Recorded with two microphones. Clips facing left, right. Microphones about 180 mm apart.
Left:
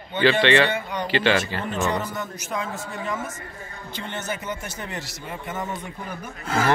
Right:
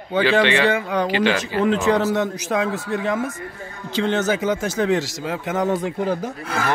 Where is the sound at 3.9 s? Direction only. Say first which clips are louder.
Right 12 dB; 90° right.